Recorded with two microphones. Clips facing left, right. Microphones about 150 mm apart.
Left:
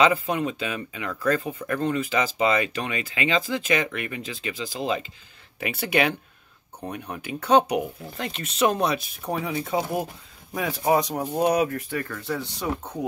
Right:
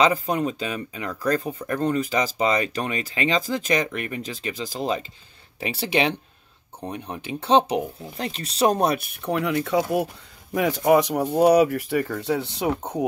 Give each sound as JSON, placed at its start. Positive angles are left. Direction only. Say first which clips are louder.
{"t": 0.0, "sound": "speech", "louder": "right 1 dB", "side_deg": -40}
{"t": 10.5, "sound": "speech", "louder": "right 4 dB", "side_deg": -90}
{"t": 12.3, "sound": "speech", "louder": "right 5 dB", "side_deg": -75}